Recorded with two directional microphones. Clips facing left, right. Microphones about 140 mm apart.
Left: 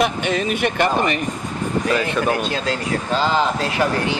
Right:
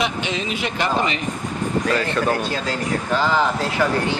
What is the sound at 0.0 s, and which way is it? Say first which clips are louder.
Speech: left 4 dB; 55° left (ahead or behind).